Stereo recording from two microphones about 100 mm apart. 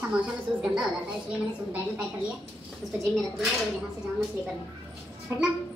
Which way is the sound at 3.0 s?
Centre (ahead or behind).